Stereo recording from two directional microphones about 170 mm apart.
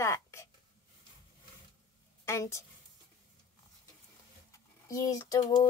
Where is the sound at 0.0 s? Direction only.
15° left (ahead or behind).